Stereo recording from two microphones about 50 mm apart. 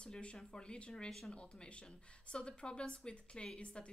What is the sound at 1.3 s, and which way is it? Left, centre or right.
A woman's voice, centre.